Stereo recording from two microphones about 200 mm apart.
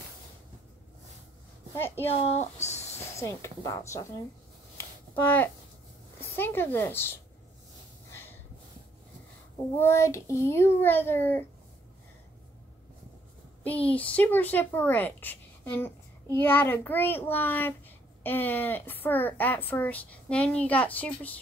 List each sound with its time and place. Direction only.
2.0 s speech: 30° left (ahead or behind)
3.2 s speech: 15° left (ahead or behind)
4.7 s a sound: 10° left (ahead or behind)
6.3 s speech: 10° left (ahead or behind)
9.8 s speech: 15° left (ahead or behind)
13.8 s speech: 5° left (ahead or behind)